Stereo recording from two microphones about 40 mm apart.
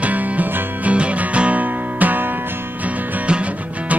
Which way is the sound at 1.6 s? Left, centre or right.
Right.